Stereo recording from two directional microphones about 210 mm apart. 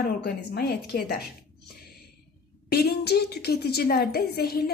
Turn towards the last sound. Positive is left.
turn(degrees=45)  # may be behind; listen again after turning